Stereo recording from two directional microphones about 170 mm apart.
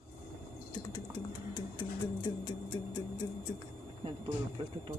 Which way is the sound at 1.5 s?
25° left (ahead or behind).